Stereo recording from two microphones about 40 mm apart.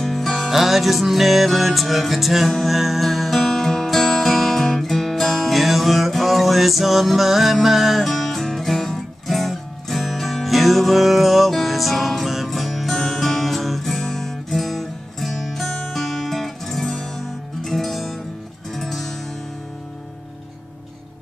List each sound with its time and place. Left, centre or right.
0.0 s music: centre